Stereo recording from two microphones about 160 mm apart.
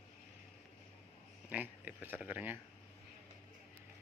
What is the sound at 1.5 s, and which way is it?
Speech, 10° right (ahead or behind).